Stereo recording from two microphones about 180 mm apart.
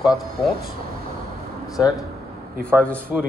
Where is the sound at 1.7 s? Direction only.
20° left (ahead or behind).